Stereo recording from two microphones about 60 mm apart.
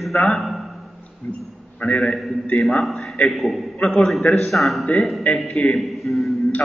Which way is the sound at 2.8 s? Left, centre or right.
Centre.